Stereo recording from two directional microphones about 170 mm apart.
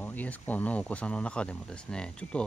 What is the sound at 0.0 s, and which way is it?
Speech, 10° left (ahead or behind).